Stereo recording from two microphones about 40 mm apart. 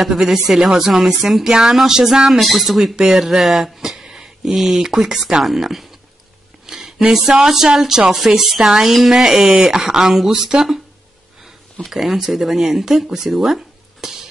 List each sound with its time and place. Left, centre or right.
0.0 s speech: centre
11.8 s speech: centre